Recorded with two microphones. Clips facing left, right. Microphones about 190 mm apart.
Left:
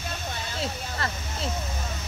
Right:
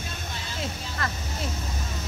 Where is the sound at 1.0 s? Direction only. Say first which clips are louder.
Even; 30° left (ahead or behind).